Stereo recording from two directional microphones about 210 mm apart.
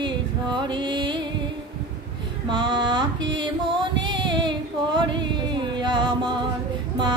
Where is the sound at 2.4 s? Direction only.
20° right (ahead or behind).